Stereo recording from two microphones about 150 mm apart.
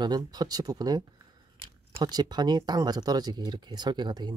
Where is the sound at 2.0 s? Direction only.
25° right (ahead or behind).